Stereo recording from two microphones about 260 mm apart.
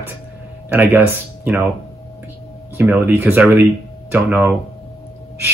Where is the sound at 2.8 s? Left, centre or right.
Centre.